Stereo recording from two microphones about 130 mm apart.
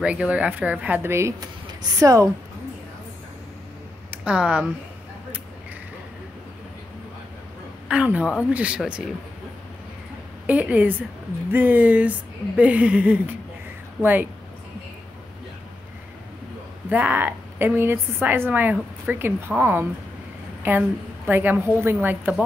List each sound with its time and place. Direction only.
0.0 s a woman's voice: 10° right (ahead or behind); by 2.2 s 25° right (ahead or behind)
4.2 s a woman's voice: 10° right (ahead or behind)
7.9 s a woman's voice: 10° right (ahead or behind)
10.4 s a woman's voice: 10° right (ahead or behind)
16.9 s a woman's voice: 15° right (ahead or behind)